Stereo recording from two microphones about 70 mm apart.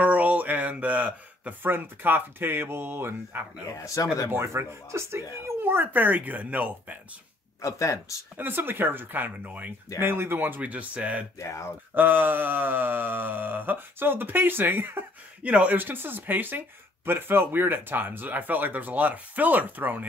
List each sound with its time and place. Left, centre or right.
0.0 s a sound: right
1.7 s speech: right
3.7 s speech: left
4.3 s speech: right
7.6 s speech: left
8.4 s speech: right
9.9 s speech: right
11.3 s speech: left
11.9 s speech: right